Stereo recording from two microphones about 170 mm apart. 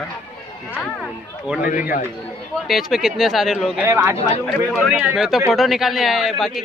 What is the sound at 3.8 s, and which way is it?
Speech, 15° right (ahead or behind).